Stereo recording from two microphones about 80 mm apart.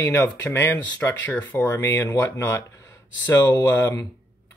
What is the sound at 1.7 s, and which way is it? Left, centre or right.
Speech, left.